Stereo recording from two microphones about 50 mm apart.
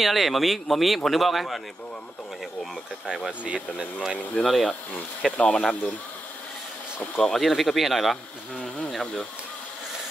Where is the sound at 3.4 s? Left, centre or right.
Right.